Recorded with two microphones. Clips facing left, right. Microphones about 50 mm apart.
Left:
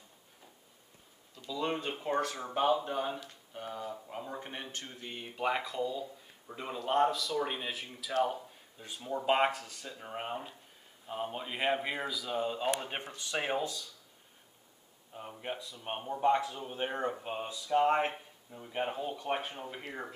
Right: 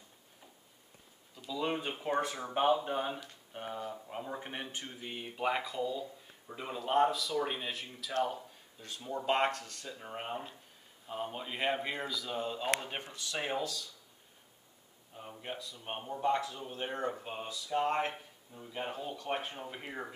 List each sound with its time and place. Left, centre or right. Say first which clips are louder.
1.3 s speech: even; centre
2.5 s speech: even; centre
4.1 s speech: even; centre
15.1 s speech: left 3 dB; centre
18.1 s a sound: left 2 dB; centre
18.8 s speech: left 4 dB; centre